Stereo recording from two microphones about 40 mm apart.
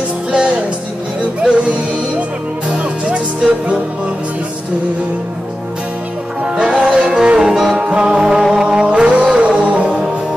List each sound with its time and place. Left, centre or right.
1.5 s music: right
6.4 s music: centre